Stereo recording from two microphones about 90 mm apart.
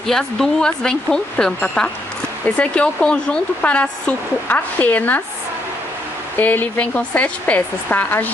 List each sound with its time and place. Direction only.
0.0 s speech: 5° left (ahead or behind)
6.3 s speech: 20° left (ahead or behind)